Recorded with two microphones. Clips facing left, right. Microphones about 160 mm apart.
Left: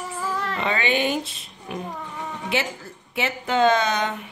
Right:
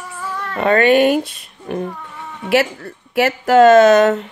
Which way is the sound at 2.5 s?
70° right (ahead or behind).